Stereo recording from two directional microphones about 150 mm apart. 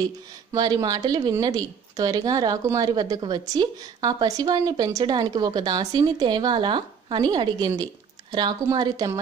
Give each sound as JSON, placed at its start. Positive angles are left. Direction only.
{"t": 0.5, "sound": "a woman's voice", "side_deg": -25}